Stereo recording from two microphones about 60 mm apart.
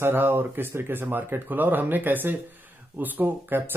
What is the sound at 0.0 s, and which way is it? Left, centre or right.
Speech, right.